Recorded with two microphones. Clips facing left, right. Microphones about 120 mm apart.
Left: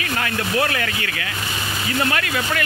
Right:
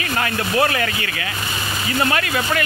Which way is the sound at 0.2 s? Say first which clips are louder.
Right 3 dB; 20° right (ahead or behind).